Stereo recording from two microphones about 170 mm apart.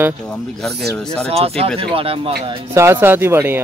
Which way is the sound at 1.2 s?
35° right (ahead or behind).